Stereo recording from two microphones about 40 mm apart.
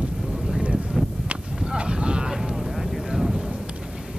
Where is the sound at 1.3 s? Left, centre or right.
Right.